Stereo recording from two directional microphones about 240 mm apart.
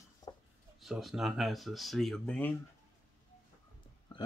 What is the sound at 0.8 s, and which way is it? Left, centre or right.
Speech, centre.